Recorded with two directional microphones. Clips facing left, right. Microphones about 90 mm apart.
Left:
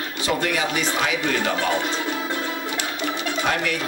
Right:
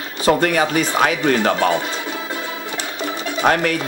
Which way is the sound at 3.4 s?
50° right (ahead or behind).